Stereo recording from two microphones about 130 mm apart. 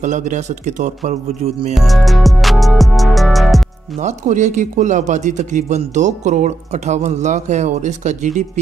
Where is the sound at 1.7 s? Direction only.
Centre (ahead or behind).